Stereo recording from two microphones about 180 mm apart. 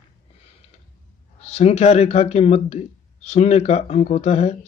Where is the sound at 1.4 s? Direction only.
35° left (ahead or behind).